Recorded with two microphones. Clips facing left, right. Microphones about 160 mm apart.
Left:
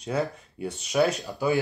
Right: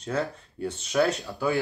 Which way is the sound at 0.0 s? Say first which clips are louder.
Left 1 dB; 10° left (ahead or behind).